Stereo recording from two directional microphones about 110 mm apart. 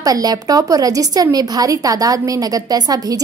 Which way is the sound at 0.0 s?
35° right (ahead or behind).